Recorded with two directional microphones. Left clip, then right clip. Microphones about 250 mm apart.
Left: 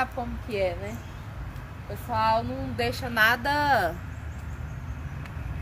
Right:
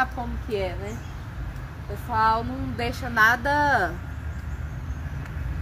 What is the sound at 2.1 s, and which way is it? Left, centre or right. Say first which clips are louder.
A woman's voice: right 2 dB; left.